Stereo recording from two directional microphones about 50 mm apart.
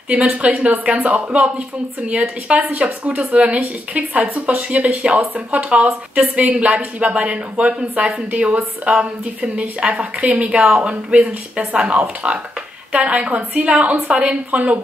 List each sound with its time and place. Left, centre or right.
0.1 s a woman's voice: right
2.6 s a woman's voice: right